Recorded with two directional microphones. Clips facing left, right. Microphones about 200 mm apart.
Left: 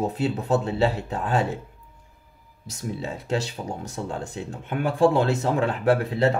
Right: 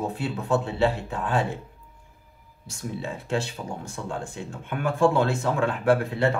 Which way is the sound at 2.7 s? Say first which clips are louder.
Left 2 dB; 40° left (ahead or behind).